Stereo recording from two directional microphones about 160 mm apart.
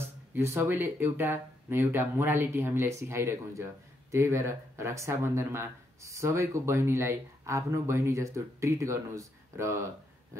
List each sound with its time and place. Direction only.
0.3 s speech: 15° right (ahead or behind)